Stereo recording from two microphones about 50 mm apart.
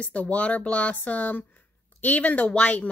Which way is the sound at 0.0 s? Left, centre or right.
Left.